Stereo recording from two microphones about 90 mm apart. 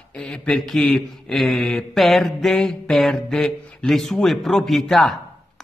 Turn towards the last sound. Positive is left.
turn(degrees=5)  # may be behind; listen again after turning